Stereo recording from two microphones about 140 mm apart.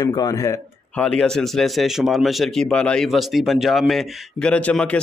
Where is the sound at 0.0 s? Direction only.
25° left (ahead or behind).